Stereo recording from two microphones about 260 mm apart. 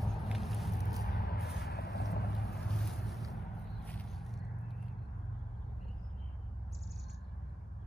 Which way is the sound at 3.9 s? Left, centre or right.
Centre.